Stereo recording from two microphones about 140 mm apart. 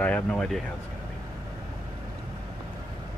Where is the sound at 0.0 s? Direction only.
10° left (ahead or behind).